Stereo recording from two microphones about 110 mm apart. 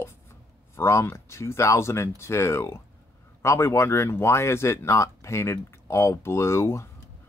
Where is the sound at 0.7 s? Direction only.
25° left (ahead or behind).